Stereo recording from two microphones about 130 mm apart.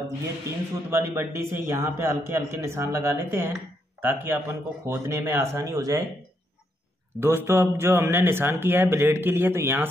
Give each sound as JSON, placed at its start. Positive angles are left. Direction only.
{"t": 0.8, "sound": "a man's voice", "side_deg": -20}
{"t": 7.2, "sound": "speech", "side_deg": -15}